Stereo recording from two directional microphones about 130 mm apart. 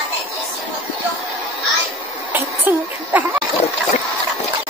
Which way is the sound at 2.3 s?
15° right (ahead or behind).